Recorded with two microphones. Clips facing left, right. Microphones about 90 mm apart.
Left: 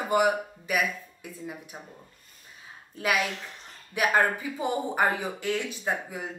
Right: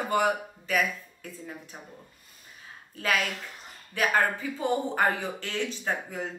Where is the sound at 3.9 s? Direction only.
15° left (ahead or behind).